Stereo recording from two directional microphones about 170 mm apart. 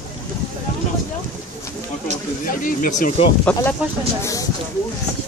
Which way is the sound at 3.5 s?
5° left (ahead or behind).